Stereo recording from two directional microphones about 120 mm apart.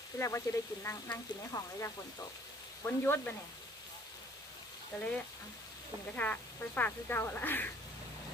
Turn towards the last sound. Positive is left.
turn(degrees=15)  # may be behind; listen again after turning